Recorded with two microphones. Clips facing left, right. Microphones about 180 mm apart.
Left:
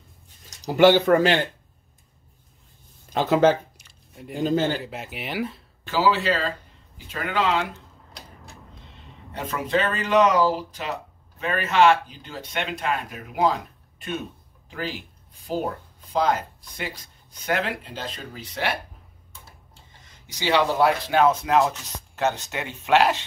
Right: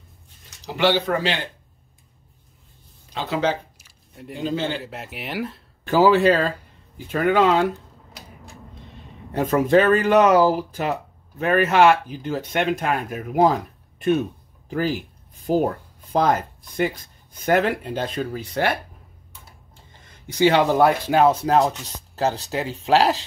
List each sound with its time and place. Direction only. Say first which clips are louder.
0.7 s speech: left 5 dB; 45° left (ahead or behind)
3.1 s speech: left 5 dB; 50° left (ahead or behind)
3.7 s a sound: right 1 dB; centre (ahead or behind)
4.4 s speech: left 3 dB; 45° left (ahead or behind)
4.8 s speech: even; centre (ahead or behind)
5.9 s speech: right 6 dB; 50° right (ahead or behind)
9.3 s speech: right 8 dB; 45° right (ahead or behind)
14.7 s speech: right 8 dB; 45° right (ahead or behind)
20.2 s speech: right 5 dB; 50° right (ahead or behind)
21.2 s speech: right 2 dB; 35° right (ahead or behind)